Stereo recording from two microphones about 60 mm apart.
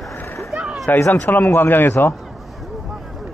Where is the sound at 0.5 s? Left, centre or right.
Centre.